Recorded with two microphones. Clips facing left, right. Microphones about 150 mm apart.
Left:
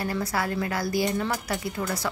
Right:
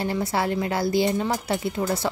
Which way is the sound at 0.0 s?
25° right (ahead or behind).